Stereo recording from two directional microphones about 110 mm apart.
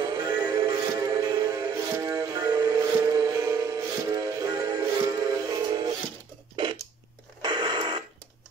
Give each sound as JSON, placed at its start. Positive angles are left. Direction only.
{"t": 0.2, "sound": "synthetic singing", "side_deg": -40}
{"t": 0.7, "sound": "music", "side_deg": -30}
{"t": 6.5, "sound": "a sound", "side_deg": -50}
{"t": 7.4, "sound": "radio", "side_deg": -40}